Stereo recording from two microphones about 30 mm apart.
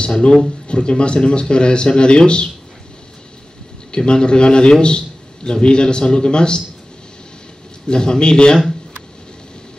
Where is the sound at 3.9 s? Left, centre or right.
Left.